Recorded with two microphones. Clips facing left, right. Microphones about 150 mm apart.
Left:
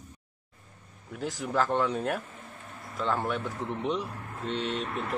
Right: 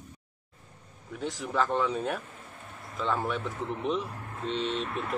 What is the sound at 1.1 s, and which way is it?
Speech, centre (ahead or behind).